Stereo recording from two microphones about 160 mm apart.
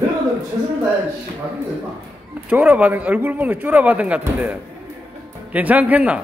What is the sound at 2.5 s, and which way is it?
Speech, 10° right (ahead or behind).